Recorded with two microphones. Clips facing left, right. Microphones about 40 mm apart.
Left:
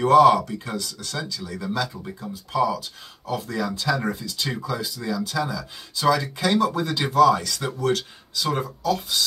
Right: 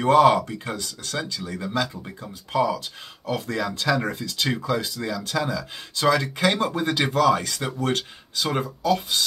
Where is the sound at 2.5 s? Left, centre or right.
Right.